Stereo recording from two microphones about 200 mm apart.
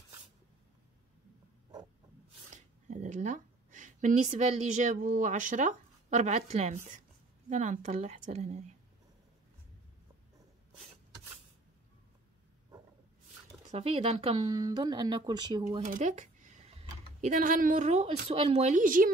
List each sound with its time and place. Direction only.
2.5 s a woman's voice: 40° right (ahead or behind)
13.7 s speech: 30° right (ahead or behind)
15.8 s speech: 40° right (ahead or behind)